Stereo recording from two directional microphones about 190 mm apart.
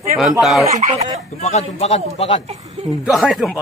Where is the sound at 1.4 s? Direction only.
35° left (ahead or behind).